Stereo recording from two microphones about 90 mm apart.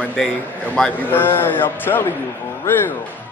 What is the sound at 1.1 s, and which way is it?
Speech, 25° left (ahead or behind).